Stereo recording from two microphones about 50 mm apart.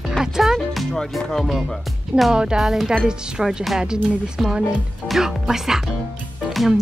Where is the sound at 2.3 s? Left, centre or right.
Centre.